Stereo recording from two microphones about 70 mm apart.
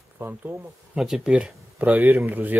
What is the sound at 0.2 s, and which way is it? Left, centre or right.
Speech, right.